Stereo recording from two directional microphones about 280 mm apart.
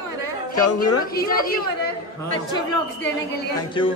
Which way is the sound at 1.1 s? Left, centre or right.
Left.